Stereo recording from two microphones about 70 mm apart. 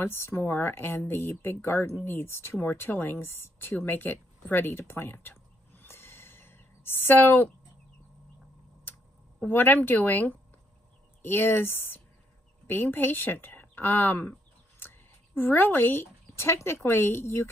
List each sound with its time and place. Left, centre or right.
0.0 s speech: left
9.5 s speech: left
14.8 s a sound: left
16.8 s speech: left